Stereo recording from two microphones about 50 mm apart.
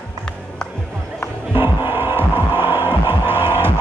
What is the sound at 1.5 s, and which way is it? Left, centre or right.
Music, right.